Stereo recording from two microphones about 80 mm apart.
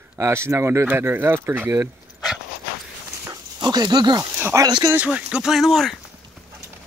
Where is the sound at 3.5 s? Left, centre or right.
Right.